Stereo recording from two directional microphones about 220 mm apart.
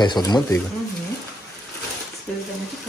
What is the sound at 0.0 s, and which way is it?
Speech, 20° left (ahead or behind).